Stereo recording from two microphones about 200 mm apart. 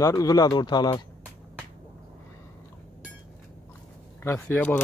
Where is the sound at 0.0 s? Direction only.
15° left (ahead or behind).